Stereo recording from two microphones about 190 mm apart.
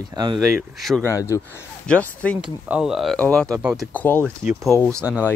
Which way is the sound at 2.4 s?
5° right (ahead or behind).